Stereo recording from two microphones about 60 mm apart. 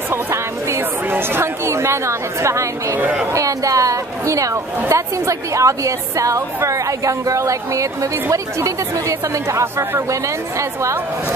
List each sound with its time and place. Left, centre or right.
0.1 s speech: right
3.3 s a woman's voice: right